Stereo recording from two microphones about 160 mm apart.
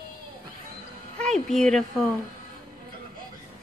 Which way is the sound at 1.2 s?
5° left (ahead or behind).